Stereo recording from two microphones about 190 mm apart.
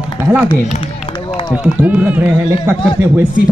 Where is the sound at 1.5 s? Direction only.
10° right (ahead or behind).